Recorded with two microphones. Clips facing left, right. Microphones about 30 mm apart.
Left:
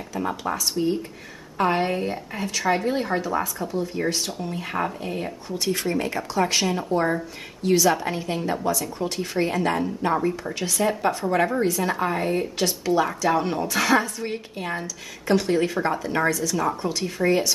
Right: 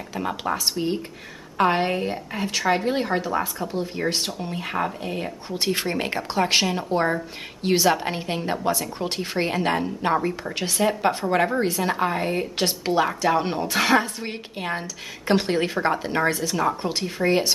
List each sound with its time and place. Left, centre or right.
0.1 s speech: right
1.6 s a woman's voice: right
4.7 s speech: centre
5.5 s a woman's voice: right
10.1 s speech: centre
10.5 s a woman's voice: right